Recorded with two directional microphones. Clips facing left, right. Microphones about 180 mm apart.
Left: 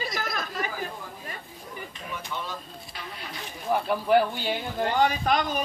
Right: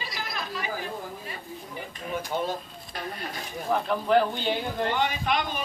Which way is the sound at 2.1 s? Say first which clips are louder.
Right 7 dB; 45° right (ahead or behind).